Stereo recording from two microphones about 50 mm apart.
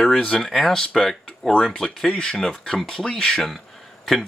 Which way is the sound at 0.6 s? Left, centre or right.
Centre.